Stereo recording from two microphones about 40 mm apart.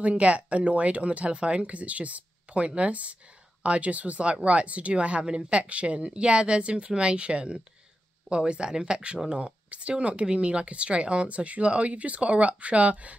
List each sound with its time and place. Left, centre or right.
0.2 s speech: right